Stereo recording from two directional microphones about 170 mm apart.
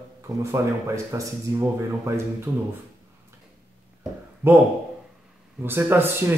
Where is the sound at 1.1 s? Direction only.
15° right (ahead or behind).